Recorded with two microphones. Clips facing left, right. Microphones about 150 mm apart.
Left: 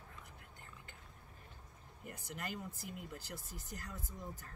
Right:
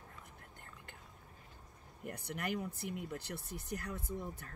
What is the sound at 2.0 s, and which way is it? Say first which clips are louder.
Speech: right 6 dB; 60° right (ahead or behind).